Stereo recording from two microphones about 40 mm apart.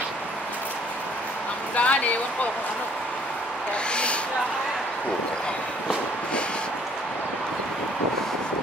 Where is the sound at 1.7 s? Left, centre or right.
Left.